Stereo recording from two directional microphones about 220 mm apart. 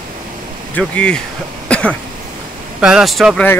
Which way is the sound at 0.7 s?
5° left (ahead or behind).